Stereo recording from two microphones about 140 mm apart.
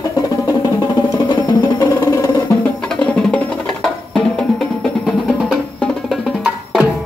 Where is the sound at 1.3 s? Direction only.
25° left (ahead or behind).